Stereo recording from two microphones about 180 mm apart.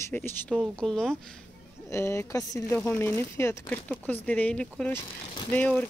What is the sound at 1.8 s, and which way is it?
Speech, 15° left (ahead or behind).